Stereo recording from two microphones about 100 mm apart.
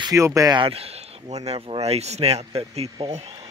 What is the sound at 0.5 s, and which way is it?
Speech, 60° right (ahead or behind).